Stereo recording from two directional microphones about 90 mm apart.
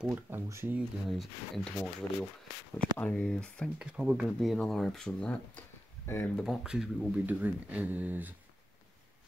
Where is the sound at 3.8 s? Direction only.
10° right (ahead or behind).